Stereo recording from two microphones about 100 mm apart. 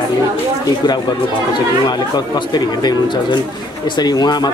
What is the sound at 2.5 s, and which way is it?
Speech, 45° left (ahead or behind).